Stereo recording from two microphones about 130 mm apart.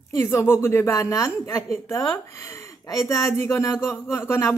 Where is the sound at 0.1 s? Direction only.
20° left (ahead or behind).